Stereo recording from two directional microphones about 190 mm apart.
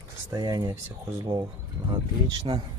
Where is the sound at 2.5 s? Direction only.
25° right (ahead or behind).